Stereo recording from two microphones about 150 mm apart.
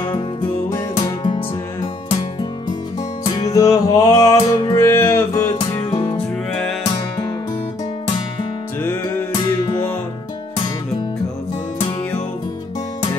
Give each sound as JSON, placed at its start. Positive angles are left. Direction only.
{"t": 0.9, "sound": "music", "side_deg": 30}
{"t": 3.3, "sound": "music", "side_deg": 25}